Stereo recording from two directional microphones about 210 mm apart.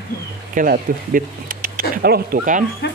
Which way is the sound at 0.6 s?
40° right (ahead or behind).